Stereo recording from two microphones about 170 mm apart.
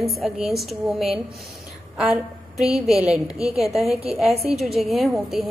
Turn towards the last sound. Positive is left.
turn(degrees=0)  # may be behind; listen again after turning